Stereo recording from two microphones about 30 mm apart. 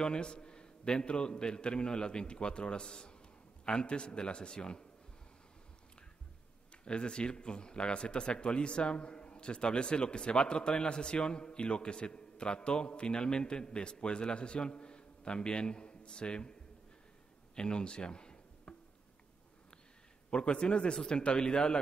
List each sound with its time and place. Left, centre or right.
0.0 s speech: left
6.8 s speech: left
17.6 s a man's voice: left
18.7 s a sound: left
20.2 s speech: left